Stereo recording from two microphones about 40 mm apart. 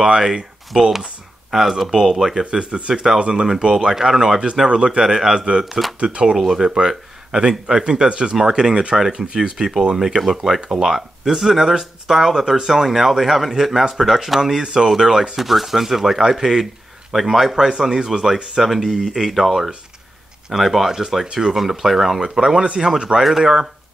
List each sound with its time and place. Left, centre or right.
0.0 s speech: centre
9.4 s speech: centre
14.4 s speech: centre
21.3 s speech: centre
21.5 s speech: centre
23.2 s speech: centre